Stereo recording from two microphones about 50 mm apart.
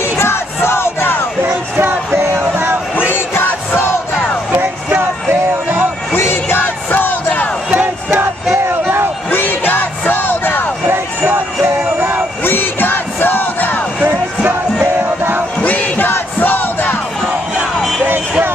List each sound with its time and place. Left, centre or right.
0.2 s crowd: left
2.4 s music: right
3.1 s music: left
4.6 s a sound: right
6.1 s music: left
7.7 s music: right
8.8 s crowd: right
9.3 s music: left
12.4 s music: left
15.0 s music: right
15.6 s battle cry: left
16.1 s crowd: left